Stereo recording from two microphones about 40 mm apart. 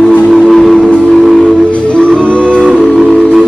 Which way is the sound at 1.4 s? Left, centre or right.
Left.